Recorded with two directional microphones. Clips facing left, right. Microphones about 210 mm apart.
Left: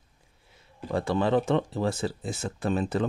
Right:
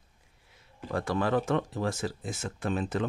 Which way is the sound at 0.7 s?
30° left (ahead or behind).